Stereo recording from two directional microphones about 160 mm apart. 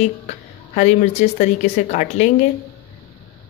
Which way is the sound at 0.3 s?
50° left (ahead or behind).